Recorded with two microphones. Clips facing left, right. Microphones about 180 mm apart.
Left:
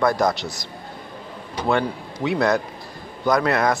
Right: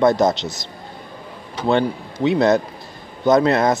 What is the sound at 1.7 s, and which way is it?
Speech, 25° right (ahead or behind).